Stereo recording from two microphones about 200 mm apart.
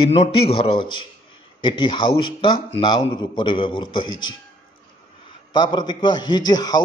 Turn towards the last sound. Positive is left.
turn(degrees=20)  # may be behind; listen again after turning